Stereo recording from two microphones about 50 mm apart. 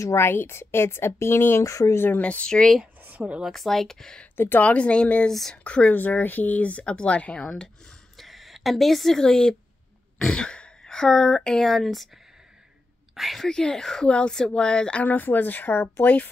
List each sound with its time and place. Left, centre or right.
0.0 s a woman's voice: left
0.3 s a woman's voice: left
2.0 s speech: left
2.2 s speech: left
3.0 s a sound: right
3.4 s speech: centre
4.6 s speech: left
5.9 s speech: left; by 7.9 s centre
8.2 s speech: centre
13.1 s a woman's voice: centre
13.5 s speech: centre
14.0 s speech: centre
15.0 s speech: left